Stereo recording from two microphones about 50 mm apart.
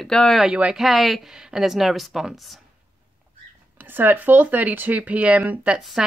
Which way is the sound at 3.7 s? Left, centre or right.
Right.